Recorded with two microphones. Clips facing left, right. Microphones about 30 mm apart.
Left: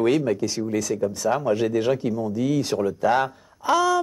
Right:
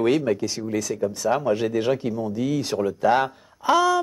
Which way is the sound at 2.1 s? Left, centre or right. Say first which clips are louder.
Left 1 dB; right.